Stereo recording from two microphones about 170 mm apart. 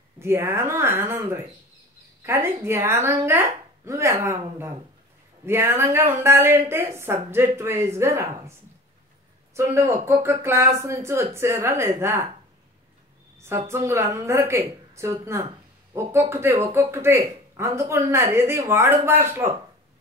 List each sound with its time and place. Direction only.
0.2 s speech: 15° right (ahead or behind)
13.4 s speech: 15° right (ahead or behind)